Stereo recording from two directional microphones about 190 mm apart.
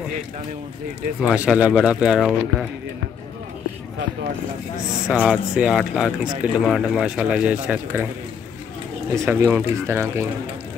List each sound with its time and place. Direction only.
1.2 s speech: 5° right (ahead or behind)
5.0 s speech: 5° right (ahead or behind)
9.1 s speech: 15° right (ahead or behind)